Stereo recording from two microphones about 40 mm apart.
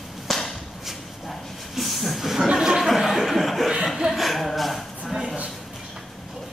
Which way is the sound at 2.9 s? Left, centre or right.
Centre.